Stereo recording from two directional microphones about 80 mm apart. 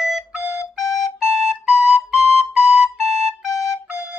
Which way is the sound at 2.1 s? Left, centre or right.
Centre.